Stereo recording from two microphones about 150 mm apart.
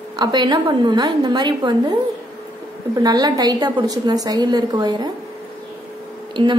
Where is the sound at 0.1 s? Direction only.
30° right (ahead or behind).